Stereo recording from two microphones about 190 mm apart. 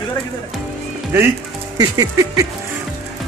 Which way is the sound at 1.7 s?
20° right (ahead or behind).